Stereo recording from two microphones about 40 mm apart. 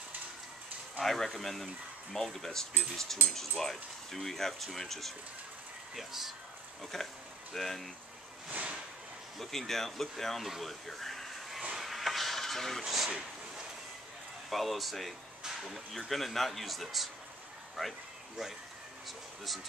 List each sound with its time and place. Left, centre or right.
0.9 s speech: centre
5.9 s speech: centre
6.8 s speech: centre
8.5 s whip: right
9.4 s speech: centre
11.8 s a sound: centre
12.8 s speech: centre
14.5 s speech: centre
19.0 s speech: centre